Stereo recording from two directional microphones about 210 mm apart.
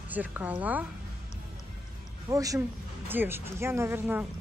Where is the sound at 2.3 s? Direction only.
15° right (ahead or behind).